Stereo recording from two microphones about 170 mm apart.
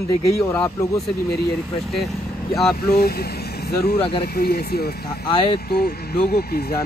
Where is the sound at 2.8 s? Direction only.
65° left (ahead or behind).